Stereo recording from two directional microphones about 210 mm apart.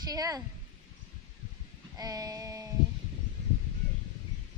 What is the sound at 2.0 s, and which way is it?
Speech, 20° right (ahead or behind).